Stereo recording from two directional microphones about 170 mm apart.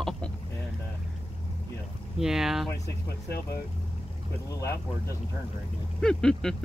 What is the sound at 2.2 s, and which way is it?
Speech, 5° right (ahead or behind).